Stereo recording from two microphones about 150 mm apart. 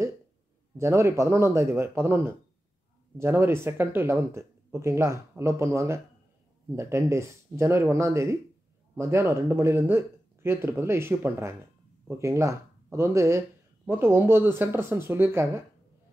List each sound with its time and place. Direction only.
0.7 s speech: 20° right (ahead or behind)